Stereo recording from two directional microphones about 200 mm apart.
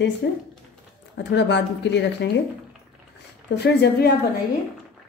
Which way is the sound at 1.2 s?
60° left (ahead or behind).